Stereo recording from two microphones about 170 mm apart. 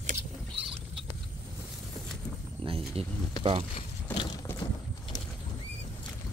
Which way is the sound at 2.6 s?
35° right (ahead or behind).